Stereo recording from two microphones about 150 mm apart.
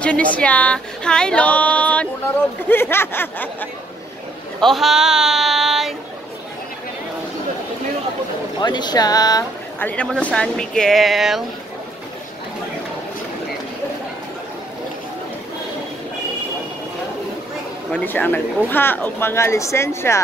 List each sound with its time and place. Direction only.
0.0 s speech: 10° left (ahead or behind)
4.6 s speech: centre (ahead or behind)
8.5 s speech: 30° left (ahead or behind)
9.8 s speech: 10° left (ahead or behind)
17.9 s speech: 10° left (ahead or behind)